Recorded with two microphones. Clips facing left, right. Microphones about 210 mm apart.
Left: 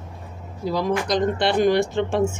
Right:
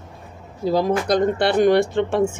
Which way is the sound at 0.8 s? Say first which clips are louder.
Right 2 dB; 55° right (ahead or behind).